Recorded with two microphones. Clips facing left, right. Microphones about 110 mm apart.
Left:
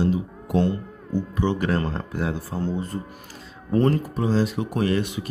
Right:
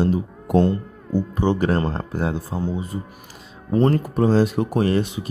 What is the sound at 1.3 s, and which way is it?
Speech, 30° right (ahead or behind).